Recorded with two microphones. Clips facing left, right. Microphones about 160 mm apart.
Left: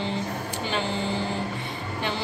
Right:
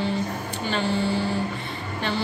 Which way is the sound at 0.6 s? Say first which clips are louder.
Right 4 dB; 15° left (ahead or behind).